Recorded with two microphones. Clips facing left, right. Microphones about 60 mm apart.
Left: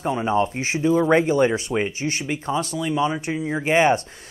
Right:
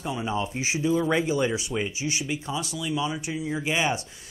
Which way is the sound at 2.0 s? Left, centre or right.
Left.